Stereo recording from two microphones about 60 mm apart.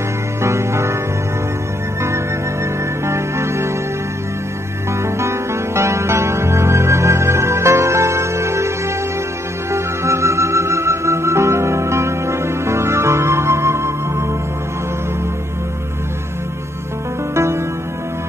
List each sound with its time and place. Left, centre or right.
0.4 s music: right
3.1 s music: right
5.0 s music: right